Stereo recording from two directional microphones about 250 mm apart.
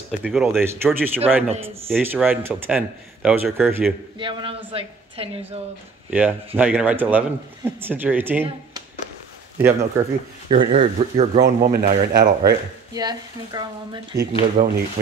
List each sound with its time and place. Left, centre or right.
0.2 s speech: centre
4.2 s a woman's voice: centre
6.0 s speech: centre; by 11.4 s right
11.4 s speech: right
12.9 s speech: centre
14.6 s speech: right